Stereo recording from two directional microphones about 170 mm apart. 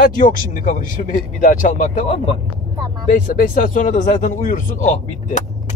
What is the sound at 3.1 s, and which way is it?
Speech, 50° left (ahead or behind).